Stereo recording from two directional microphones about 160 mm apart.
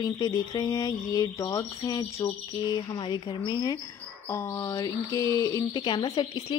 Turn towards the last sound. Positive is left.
turn(degrees=30)  # may be behind; listen again after turning